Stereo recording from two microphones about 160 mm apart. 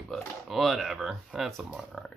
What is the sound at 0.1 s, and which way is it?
Speech, centre (ahead or behind).